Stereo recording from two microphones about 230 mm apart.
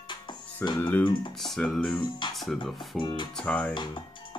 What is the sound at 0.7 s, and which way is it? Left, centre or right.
Speech, centre.